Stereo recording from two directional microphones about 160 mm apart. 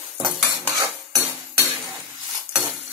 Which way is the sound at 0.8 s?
20° right (ahead or behind).